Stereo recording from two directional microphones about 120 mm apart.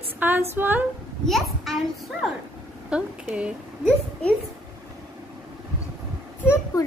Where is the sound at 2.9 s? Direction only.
10° right (ahead or behind).